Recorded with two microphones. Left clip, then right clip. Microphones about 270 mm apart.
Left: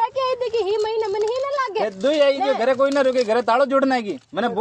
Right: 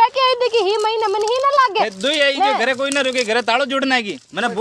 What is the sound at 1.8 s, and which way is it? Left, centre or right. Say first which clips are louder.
Speech: even; centre.